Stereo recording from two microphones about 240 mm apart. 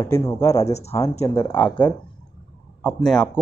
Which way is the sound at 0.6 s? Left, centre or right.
Left.